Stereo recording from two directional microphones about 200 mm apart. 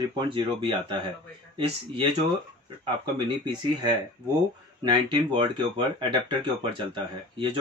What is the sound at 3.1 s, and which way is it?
Speech, 25° right (ahead or behind).